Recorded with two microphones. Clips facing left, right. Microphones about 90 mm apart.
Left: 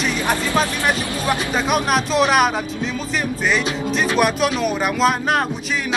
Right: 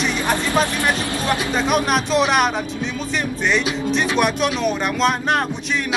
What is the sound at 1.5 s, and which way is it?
Speech, centre (ahead or behind).